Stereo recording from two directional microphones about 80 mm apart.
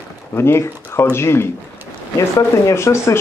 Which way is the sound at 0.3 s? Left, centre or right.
Left.